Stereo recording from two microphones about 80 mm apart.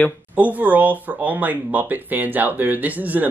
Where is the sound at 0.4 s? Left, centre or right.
Centre.